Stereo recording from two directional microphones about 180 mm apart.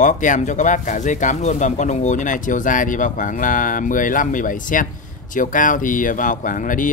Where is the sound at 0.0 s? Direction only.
45° left (ahead or behind).